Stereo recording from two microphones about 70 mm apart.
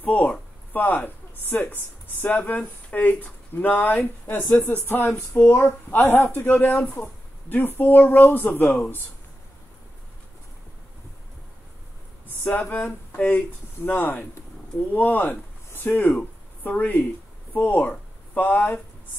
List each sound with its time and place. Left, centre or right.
0.0 s speech: left
12.5 s speech: left
16.0 s speech: centre
16.6 s speech: left